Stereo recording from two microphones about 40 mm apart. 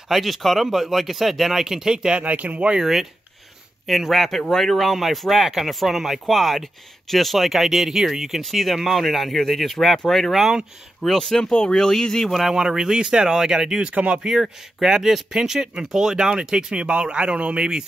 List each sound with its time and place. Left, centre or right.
0.1 s speech: centre
2.2 s speech: right
2.8 s speech: centre
12.5 s speech: centre